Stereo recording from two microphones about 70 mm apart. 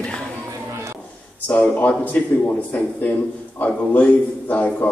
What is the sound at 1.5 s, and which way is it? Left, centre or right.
A man's voice, centre.